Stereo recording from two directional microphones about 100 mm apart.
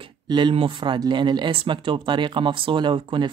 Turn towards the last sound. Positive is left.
turn(degrees=-55)  # may be behind; listen again after turning